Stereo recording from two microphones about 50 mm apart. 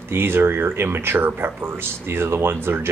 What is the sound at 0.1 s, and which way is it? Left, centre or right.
Speech, right.